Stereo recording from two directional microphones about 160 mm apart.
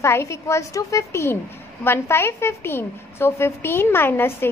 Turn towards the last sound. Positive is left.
turn(degrees=15)  # may be behind; listen again after turning